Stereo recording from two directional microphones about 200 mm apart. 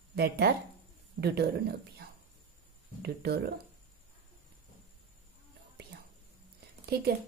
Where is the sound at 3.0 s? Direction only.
55° right (ahead or behind).